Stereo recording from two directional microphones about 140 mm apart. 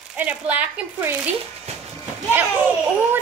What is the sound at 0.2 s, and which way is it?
Speech, 10° right (ahead or behind).